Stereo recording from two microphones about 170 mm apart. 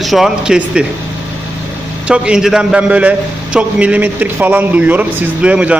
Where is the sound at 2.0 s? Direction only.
5° right (ahead or behind).